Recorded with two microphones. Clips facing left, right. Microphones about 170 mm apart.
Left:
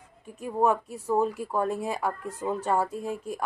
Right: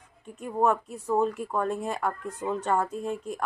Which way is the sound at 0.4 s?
5° left (ahead or behind).